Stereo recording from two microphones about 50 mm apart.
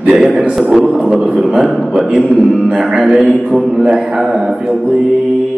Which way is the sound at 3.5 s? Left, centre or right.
Centre.